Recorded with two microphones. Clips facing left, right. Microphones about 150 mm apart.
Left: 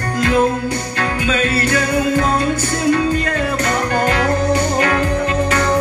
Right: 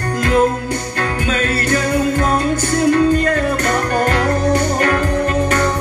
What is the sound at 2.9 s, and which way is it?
Music, 50° right (ahead or behind).